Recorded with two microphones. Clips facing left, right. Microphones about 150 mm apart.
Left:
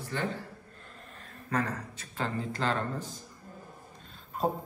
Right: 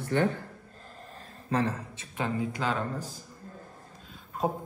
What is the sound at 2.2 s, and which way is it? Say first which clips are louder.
Speech: right 2 dB; 10° right (ahead or behind).